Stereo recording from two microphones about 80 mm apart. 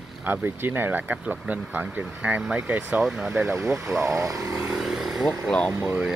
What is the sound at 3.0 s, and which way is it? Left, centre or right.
Speech, centre.